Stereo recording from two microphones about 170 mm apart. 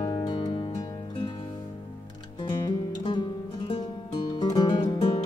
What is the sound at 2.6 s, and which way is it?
Music, 30° left (ahead or behind).